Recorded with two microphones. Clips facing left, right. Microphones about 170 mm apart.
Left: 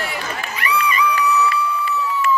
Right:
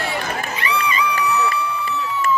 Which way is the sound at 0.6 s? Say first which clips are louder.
Left 3 dB; 25° right (ahead or behind).